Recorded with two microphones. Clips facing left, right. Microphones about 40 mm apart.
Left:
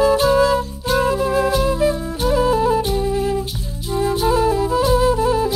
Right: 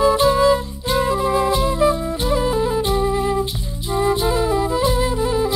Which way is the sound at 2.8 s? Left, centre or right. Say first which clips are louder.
Right 1 dB; right.